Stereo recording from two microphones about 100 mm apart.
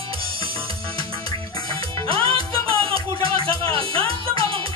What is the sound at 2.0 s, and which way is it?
Music, 60° right (ahead or behind).